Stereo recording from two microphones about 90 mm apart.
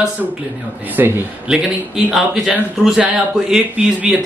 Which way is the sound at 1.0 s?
25° right (ahead or behind).